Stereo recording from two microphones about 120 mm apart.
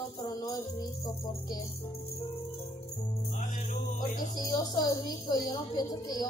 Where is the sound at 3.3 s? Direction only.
90° left.